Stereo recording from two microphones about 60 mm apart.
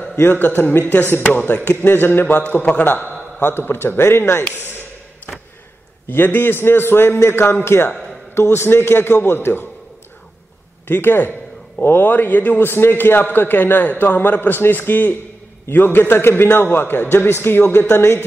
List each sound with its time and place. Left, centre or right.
0.2 s a man's voice: left
1.9 s a man's voice: left
3.3 s a man's voice: left
6.0 s a man's voice: left
10.9 s a man's voice: left